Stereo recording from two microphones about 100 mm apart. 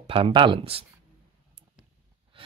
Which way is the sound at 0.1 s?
60° right (ahead or behind).